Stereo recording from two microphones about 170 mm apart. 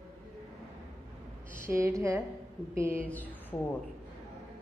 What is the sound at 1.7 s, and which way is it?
A woman's voice, 15° right (ahead or behind).